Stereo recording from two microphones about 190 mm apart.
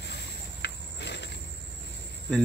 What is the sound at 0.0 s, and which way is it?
Cricket, 65° left (ahead or behind).